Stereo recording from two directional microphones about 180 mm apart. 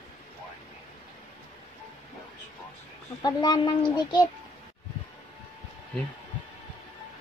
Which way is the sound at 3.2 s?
25° left (ahead or behind).